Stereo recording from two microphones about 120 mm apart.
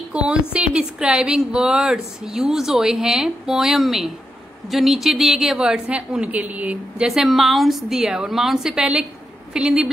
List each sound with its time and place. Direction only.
0.1 s a woman's voice: 10° right (ahead or behind)